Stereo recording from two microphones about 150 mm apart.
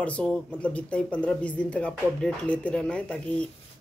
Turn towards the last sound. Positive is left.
turn(degrees=10)  # may be behind; listen again after turning